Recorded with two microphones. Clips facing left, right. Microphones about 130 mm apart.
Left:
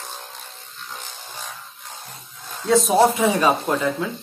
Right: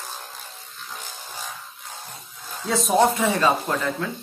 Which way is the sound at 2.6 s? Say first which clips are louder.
Left 3 dB; centre (ahead or behind).